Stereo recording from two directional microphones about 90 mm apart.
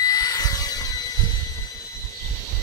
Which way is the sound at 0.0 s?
40° left (ahead or behind).